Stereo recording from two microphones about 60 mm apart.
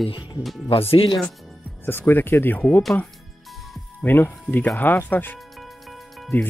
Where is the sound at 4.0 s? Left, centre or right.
Left.